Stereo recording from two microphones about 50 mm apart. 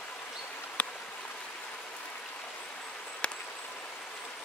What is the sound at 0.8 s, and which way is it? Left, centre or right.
Stream, left.